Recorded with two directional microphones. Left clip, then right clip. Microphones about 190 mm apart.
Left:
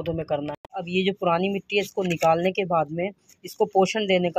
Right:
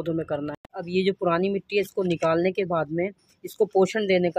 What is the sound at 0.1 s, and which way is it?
Speech, 10° right (ahead or behind).